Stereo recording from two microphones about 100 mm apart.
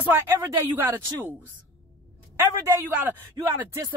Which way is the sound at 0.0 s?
20° right (ahead or behind).